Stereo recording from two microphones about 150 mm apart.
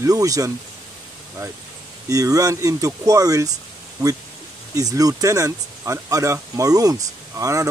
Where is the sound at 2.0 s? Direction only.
25° right (ahead or behind).